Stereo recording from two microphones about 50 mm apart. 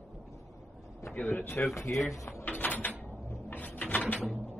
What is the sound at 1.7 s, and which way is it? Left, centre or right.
Speech, left.